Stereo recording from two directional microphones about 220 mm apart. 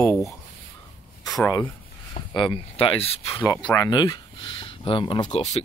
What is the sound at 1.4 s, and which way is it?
Speech, 15° left (ahead or behind).